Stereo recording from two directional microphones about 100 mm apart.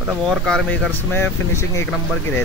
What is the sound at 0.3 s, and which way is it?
Speech, centre (ahead or behind).